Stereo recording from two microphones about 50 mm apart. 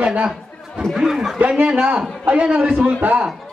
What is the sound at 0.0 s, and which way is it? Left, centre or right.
Speech, right.